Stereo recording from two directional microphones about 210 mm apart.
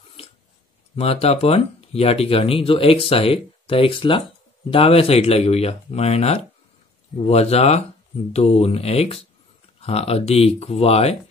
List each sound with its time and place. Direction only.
0.9 s speech: 30° left (ahead or behind)